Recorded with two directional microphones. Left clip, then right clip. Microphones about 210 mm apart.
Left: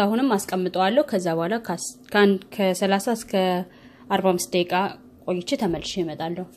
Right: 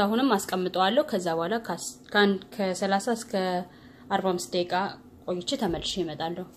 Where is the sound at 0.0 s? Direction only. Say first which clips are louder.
Left 2 dB; 30° left (ahead or behind).